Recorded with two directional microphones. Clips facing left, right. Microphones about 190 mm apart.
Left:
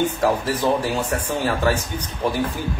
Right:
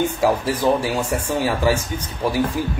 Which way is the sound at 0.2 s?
10° right (ahead or behind).